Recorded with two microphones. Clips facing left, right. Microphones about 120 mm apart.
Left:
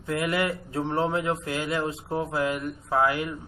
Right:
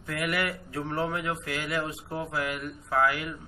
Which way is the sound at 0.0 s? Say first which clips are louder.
Left 4 dB; 25° left (ahead or behind).